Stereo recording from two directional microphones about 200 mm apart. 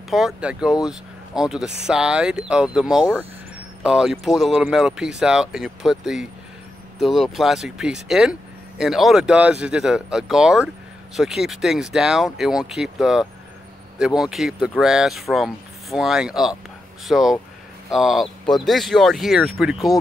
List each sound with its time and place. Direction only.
0.1 s speech: 5° right (ahead or behind)